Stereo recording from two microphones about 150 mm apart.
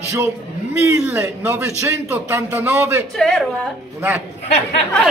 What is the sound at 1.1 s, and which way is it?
Speech, 15° right (ahead or behind).